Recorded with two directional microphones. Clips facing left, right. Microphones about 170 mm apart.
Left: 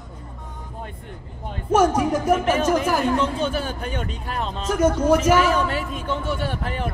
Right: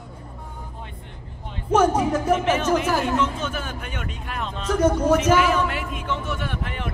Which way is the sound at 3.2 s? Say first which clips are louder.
Left 3 dB; 35° left (ahead or behind).